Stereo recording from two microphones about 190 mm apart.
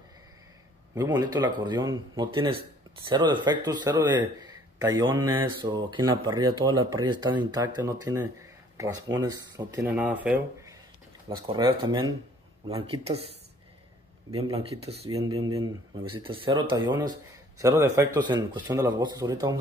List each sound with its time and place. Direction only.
0.9 s speech: 20° right (ahead or behind)
9.8 s speech: 10° right (ahead or behind)
11.2 s speech: 25° right (ahead or behind)
14.3 s speech: 30° right (ahead or behind)